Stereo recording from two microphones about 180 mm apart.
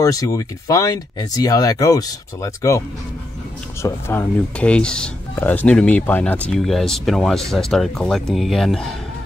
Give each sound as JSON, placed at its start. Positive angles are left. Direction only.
{"t": 0.0, "sound": "speech", "side_deg": 20}
{"t": 3.8, "sound": "speech", "side_deg": 10}